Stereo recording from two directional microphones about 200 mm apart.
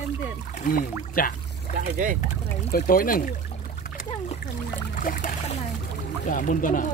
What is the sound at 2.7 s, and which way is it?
Speech, 45° left (ahead or behind).